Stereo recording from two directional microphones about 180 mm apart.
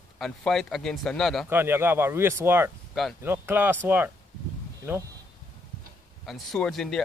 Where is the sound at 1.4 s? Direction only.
10° right (ahead or behind).